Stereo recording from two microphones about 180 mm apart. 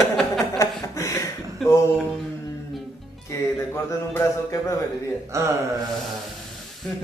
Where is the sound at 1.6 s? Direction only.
15° left (ahead or behind).